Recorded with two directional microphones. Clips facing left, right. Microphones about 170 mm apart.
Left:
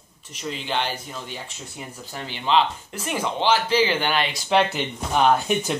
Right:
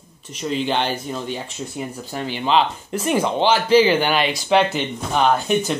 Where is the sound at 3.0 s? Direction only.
20° right (ahead or behind).